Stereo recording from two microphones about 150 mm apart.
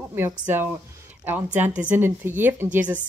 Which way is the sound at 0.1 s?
15° right (ahead or behind).